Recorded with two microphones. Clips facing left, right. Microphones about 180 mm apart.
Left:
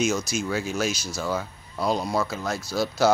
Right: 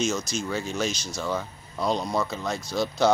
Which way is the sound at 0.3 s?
10° left (ahead or behind).